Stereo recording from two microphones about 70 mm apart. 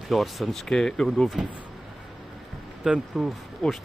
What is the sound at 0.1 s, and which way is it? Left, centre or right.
Speech, centre.